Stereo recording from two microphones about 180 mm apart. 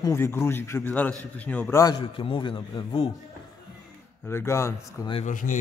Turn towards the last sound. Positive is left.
turn(degrees=45)  # may be behind; listen again after turning